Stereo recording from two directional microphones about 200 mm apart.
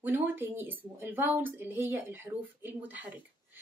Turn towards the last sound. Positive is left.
turn(degrees=-10)  # may be behind; listen again after turning